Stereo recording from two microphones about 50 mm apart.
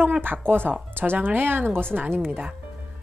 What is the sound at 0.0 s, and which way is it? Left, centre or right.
Speech, right.